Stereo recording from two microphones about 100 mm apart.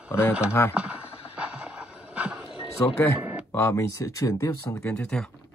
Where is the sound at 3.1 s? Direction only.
20° right (ahead or behind).